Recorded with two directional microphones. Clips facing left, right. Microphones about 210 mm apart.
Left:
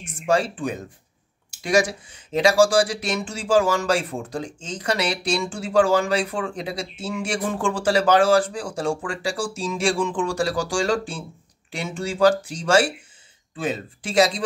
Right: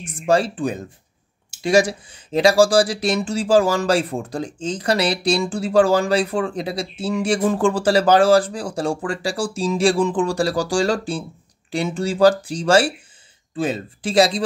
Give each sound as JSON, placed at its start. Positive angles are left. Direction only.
{"t": 0.0, "sound": "speech", "side_deg": -35}